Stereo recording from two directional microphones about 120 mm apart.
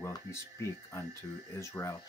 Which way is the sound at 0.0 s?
25° left (ahead or behind).